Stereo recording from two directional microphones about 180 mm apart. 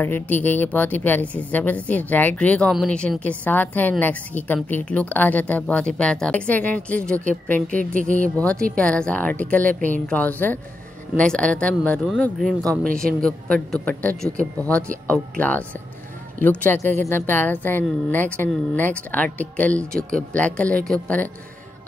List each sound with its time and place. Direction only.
0.0 s speech: 10° left (ahead or behind)
7.9 s speech: 45° right (ahead or behind)
8.4 s a man's voice: 5° left (ahead or behind)